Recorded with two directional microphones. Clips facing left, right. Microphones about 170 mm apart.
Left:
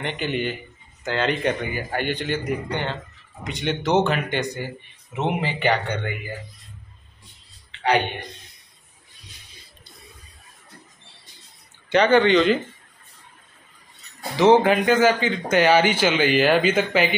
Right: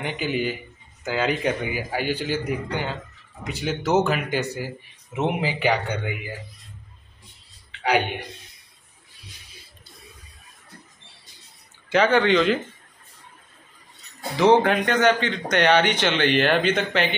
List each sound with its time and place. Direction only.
0.0 s speech: 5° right (ahead or behind)
7.8 s speech: 5° right (ahead or behind)
11.9 s speech: centre (ahead or behind)
14.3 s speech: centre (ahead or behind)